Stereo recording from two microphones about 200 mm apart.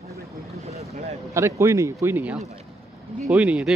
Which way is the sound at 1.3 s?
15° right (ahead or behind).